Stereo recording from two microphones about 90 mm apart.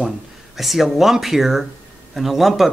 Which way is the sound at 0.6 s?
Centre (ahead or behind).